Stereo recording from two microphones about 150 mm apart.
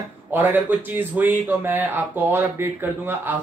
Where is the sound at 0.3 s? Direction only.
15° right (ahead or behind).